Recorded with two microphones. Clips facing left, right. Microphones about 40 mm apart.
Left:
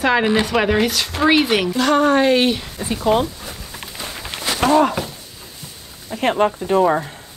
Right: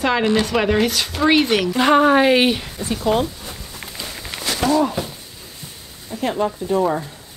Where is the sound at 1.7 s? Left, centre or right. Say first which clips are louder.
Right 2 dB; centre.